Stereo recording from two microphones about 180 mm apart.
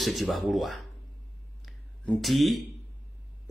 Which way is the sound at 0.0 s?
Centre (ahead or behind).